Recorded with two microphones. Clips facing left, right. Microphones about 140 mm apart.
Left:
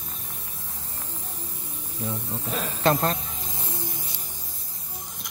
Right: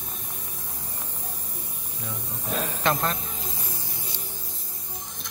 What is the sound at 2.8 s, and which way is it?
Speech, 35° left (ahead or behind).